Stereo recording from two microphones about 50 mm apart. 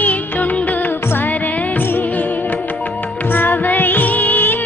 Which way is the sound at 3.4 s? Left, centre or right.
Left.